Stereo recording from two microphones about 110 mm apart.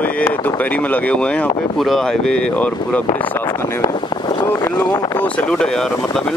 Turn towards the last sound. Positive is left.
turn(degrees=5)  # may be behind; listen again after turning